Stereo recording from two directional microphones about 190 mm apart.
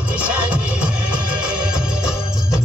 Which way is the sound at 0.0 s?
5° right (ahead or behind).